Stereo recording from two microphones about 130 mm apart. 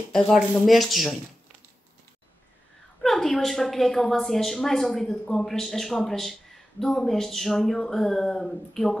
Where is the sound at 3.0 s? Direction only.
Centre (ahead or behind).